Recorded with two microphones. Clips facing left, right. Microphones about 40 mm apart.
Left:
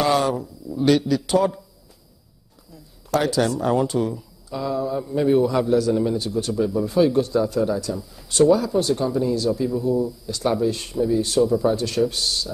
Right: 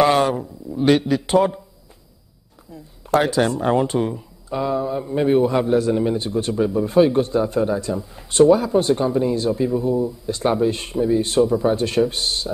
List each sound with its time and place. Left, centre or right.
0.0 s speech: right
2.7 s speech: right